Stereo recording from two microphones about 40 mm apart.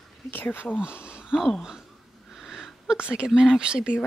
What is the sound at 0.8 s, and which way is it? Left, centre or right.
Speech, right.